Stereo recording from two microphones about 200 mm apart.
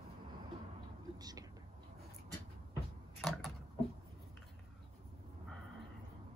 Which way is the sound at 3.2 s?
Centre (ahead or behind).